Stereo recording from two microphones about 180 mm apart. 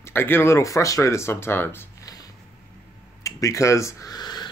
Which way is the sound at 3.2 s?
20° left (ahead or behind).